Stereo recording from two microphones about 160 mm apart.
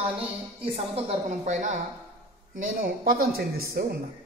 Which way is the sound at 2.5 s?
65° right (ahead or behind).